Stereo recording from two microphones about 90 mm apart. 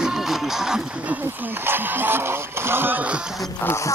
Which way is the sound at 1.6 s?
25° right (ahead or behind).